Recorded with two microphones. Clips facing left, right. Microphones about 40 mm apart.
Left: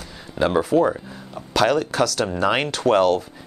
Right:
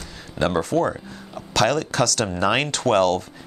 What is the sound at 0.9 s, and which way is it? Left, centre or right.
Speech, centre.